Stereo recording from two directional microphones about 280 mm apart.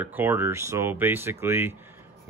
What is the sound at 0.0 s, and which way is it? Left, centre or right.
Speech, centre.